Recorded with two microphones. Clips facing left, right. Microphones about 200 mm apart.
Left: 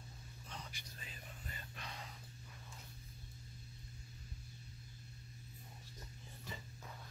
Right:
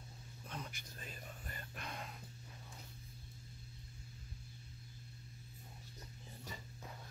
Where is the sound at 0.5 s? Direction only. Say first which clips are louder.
Right 4 dB; 50° right (ahead or behind).